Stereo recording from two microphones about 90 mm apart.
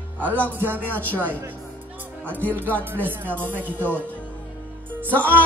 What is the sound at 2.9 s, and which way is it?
Music, 20° right (ahead or behind).